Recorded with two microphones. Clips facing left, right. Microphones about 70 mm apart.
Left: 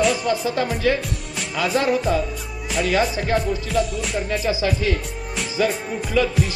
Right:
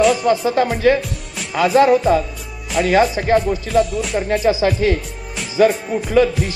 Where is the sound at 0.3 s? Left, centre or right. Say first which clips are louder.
Right 6 dB; right.